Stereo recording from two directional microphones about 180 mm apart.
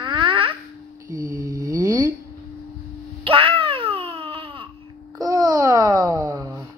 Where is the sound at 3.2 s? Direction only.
30° right (ahead or behind).